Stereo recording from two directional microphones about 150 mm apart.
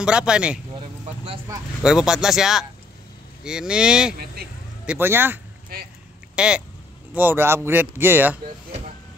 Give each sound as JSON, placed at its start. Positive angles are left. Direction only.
{"t": 0.0, "sound": "speech", "side_deg": -5}
{"t": 0.7, "sound": "vehicle", "side_deg": -35}
{"t": 1.8, "sound": "speech", "side_deg": -5}
{"t": 5.7, "sound": "speech", "side_deg": -90}
{"t": 6.3, "sound": "speech", "side_deg": -5}